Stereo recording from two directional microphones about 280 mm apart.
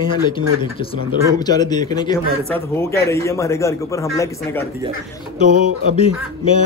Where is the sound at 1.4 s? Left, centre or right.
Centre.